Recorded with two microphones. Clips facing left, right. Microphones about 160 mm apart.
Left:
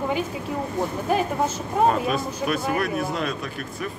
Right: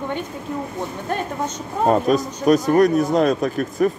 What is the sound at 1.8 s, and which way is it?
Speech, 40° right (ahead or behind).